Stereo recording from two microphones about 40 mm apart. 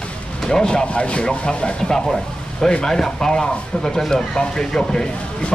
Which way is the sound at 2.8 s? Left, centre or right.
Centre.